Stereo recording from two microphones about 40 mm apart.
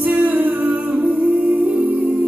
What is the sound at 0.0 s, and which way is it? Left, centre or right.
Humming, right.